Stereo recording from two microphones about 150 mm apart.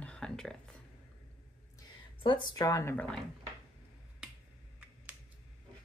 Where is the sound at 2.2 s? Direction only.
30° left (ahead or behind); by 3.1 s 15° left (ahead or behind).